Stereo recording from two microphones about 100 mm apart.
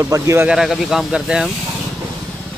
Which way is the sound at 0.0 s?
30° right (ahead or behind).